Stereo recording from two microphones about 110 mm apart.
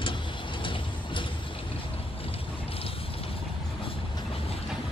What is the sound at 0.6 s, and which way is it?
Vehicle, 50° left (ahead or behind).